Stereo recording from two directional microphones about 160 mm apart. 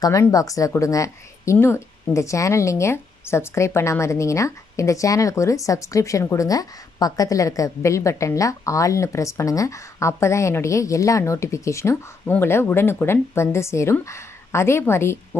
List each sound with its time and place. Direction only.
0.0 s a woman's voice: 20° left (ahead or behind)